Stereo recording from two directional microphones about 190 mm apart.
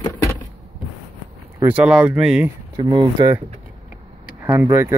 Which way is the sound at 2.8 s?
25° right (ahead or behind).